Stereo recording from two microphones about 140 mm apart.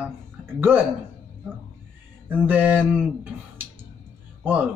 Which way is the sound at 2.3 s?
10° right (ahead or behind).